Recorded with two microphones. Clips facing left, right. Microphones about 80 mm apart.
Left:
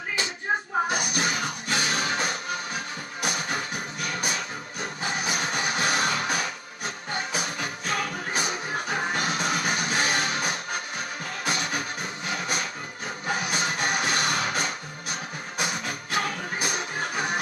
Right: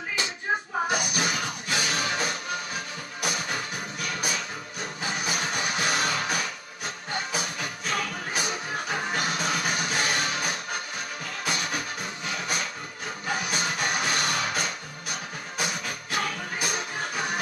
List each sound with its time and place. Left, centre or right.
0.9 s music: left